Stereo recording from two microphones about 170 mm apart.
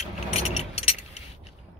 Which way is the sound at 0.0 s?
35° left (ahead or behind).